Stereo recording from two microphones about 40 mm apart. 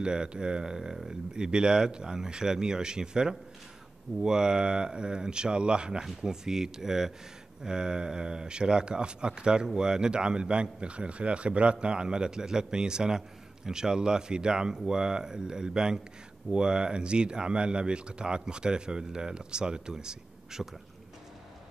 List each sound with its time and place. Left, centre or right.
0.0 s speech: right